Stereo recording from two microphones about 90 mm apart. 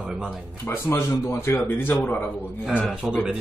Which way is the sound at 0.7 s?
30° left (ahead or behind).